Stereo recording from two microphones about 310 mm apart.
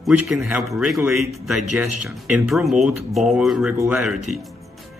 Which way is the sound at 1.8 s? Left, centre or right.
Right.